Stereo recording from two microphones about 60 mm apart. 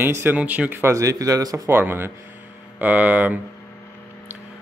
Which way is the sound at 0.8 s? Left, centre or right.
Right.